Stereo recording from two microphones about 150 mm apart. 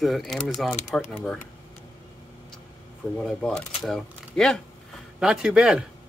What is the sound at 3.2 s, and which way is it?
Speech, centre (ahead or behind).